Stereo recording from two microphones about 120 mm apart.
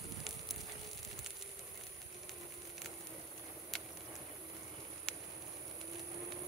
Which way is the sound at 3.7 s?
Centre (ahead or behind).